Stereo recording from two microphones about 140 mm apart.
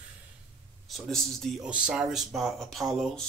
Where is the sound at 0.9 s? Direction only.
Centre (ahead or behind).